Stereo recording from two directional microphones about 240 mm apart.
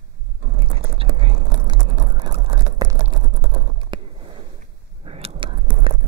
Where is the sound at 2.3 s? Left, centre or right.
Right.